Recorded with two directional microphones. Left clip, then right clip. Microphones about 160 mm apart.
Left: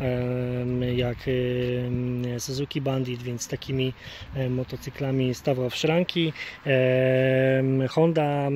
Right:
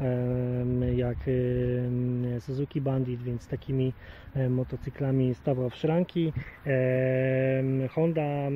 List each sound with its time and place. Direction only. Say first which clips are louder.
0.0 s speech: left 3 dB; 5° right (ahead or behind)
5.0 s speech: left 3 dB; 10° right (ahead or behind)
6.6 s speech: left 5 dB; 25° left (ahead or behind)